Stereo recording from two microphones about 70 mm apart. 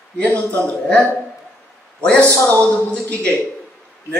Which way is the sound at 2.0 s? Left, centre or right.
Centre.